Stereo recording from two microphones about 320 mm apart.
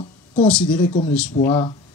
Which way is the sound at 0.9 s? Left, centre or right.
Centre.